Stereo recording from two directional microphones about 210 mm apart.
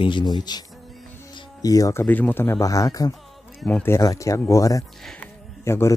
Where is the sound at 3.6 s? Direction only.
5° left (ahead or behind).